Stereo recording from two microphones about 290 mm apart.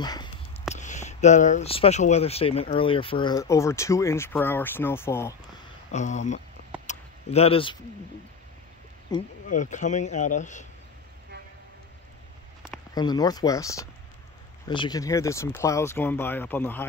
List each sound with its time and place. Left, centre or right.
0.0 s a sound: centre
0.7 s speech: left; by 5.3 s centre
5.9 s speech: left
6.9 s a sound: left
9.1 s speech: centre
9.5 s speech: left
12.9 s speech: centre